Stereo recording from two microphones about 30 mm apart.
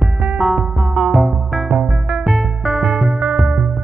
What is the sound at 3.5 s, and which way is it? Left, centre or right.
Music, right.